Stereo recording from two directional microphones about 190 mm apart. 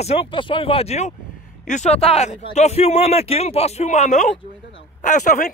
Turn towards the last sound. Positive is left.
turn(degrees=40)  # may be behind; listen again after turning